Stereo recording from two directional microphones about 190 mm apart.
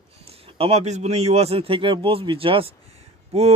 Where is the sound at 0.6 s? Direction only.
30° right (ahead or behind).